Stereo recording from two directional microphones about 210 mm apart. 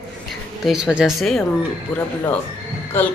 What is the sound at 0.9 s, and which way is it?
A woman's voice, 5° right (ahead or behind).